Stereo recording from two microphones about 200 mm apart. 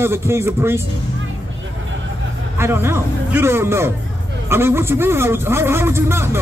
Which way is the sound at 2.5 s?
10° right (ahead or behind).